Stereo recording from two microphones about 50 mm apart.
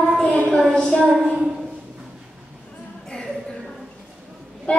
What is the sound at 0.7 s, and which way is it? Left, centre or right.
Speech, centre.